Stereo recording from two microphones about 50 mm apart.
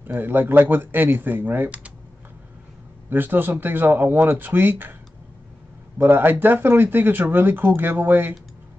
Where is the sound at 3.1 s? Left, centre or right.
Right.